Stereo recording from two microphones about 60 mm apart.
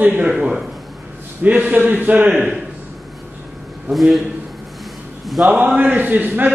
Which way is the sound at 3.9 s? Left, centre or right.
Centre.